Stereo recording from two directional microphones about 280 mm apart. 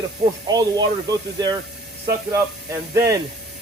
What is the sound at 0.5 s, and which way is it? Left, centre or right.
Speech, centre.